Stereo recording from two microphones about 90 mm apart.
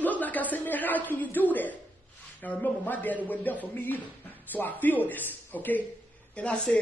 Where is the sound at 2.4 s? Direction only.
20° left (ahead or behind).